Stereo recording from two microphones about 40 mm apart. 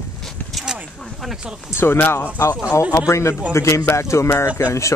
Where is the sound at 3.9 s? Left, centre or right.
Left.